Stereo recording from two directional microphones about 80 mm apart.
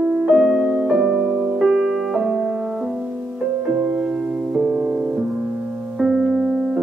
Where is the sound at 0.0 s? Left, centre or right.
Centre.